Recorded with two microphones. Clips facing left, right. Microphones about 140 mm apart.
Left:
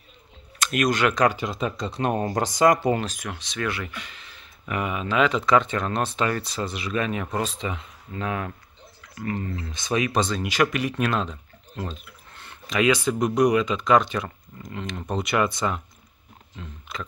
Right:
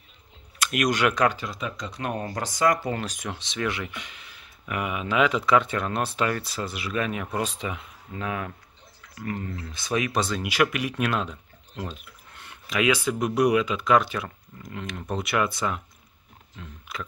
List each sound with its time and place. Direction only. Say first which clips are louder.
0.6 s speech: left 2 dB; 10° right (ahead or behind)
1.3 s speech: left 5 dB; 20° left (ahead or behind)
1.6 s speech: left 7 dB; 30° left (ahead or behind)
3.1 s speech: even; 25° right (ahead or behind); by 15.8 s 5° right (ahead or behind)